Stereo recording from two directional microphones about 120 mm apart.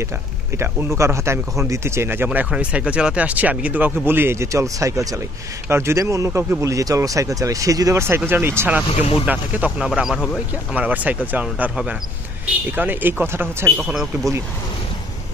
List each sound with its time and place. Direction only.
0.6 s speech: 20° right (ahead or behind)
9.8 s speech: centre (ahead or behind)
10.7 s speech: 15° right (ahead or behind)